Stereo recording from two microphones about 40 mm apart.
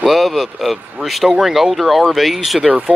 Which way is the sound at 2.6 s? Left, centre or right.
Right.